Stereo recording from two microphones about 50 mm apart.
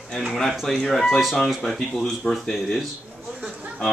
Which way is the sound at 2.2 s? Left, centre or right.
Left.